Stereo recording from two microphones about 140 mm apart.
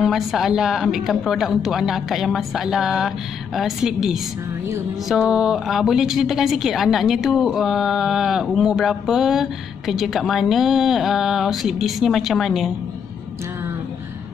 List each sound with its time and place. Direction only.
0.0 s a woman's voice: centre (ahead or behind)